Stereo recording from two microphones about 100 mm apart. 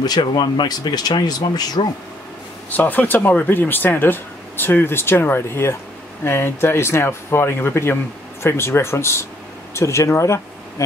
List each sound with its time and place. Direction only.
0.0 s speech: 45° left (ahead or behind)
2.7 s speech: 15° left (ahead or behind)